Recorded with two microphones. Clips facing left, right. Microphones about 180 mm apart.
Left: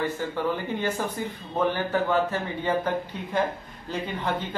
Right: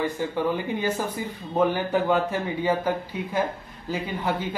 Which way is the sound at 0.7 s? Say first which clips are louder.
Right 1 dB; 10° right (ahead or behind).